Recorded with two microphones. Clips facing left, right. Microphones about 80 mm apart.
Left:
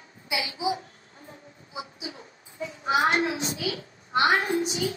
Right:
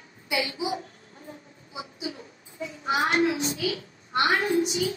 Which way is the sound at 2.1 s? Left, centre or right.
Left.